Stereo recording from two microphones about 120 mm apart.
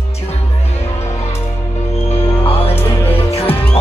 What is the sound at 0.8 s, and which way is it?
Music, 65° left (ahead or behind).